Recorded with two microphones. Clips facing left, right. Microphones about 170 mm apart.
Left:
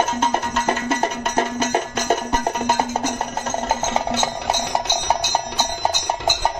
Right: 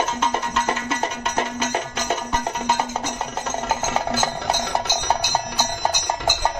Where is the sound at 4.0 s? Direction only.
20° left (ahead or behind).